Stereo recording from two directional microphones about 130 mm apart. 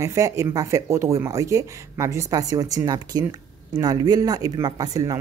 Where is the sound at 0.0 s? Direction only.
25° right (ahead or behind).